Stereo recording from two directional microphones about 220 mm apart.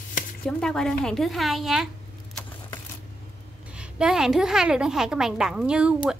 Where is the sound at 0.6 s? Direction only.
5° left (ahead or behind).